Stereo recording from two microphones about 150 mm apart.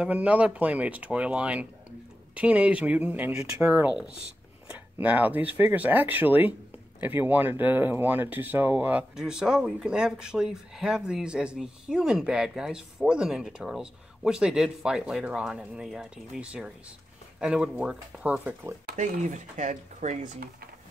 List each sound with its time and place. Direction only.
0.0 s speech: 10° right (ahead or behind)
18.9 s speech: 55° right (ahead or behind)